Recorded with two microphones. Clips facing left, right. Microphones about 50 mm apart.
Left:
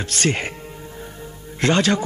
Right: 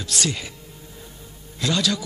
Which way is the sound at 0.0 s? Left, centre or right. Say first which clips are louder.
Left 5 dB; left.